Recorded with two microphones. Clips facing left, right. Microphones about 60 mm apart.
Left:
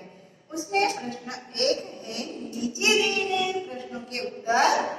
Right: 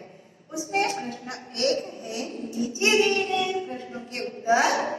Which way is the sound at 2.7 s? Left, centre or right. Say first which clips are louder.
Right 2 dB; right.